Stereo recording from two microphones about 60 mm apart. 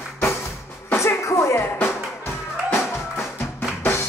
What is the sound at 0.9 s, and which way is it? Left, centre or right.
Music, left.